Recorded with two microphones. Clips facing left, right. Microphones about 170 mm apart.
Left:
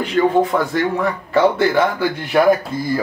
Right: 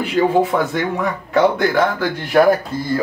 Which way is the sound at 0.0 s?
5° right (ahead or behind).